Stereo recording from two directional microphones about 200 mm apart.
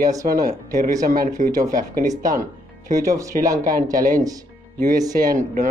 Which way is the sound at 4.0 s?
45° right (ahead or behind).